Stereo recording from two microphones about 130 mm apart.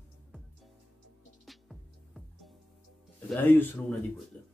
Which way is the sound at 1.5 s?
Centre (ahead or behind).